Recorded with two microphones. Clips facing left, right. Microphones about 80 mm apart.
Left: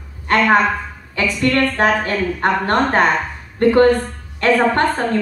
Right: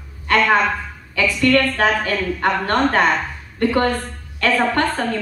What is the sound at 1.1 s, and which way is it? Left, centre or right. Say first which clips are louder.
A woman's voice: right 1 dB; left.